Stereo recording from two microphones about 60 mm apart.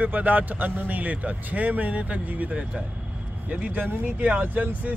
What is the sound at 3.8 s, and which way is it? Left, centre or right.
Speech, right.